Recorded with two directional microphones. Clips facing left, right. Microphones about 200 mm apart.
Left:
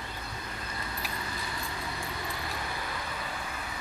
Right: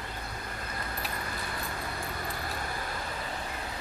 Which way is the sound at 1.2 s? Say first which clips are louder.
Right 1 dB; 50° right (ahead or behind).